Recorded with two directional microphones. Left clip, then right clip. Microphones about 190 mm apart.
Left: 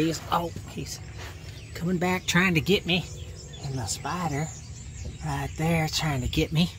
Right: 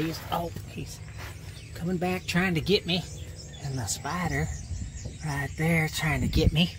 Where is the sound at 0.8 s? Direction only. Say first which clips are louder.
Left 5 dB; 30° left (ahead or behind).